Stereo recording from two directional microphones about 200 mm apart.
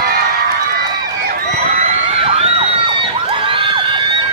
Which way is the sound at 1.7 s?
30° right (ahead or behind).